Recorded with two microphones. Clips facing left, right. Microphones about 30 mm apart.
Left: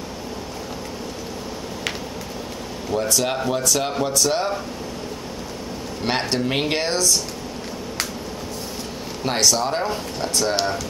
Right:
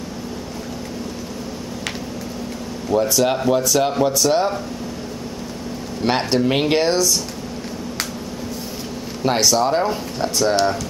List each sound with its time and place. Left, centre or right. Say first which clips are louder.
2.9 s speech: right 5 dB; centre
6.0 s speech: right 4 dB; centre
9.2 s speech: right 3 dB; centre